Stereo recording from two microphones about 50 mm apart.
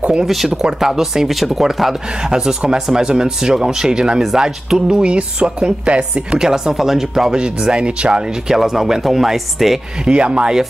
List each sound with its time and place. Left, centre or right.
0.7 s speech: centre; by 6.4 s right
6.4 s speech: centre
10.0 s speech: right